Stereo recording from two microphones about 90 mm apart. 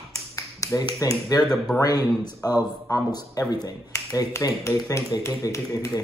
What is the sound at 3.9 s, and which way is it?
Speech, 40° left (ahead or behind).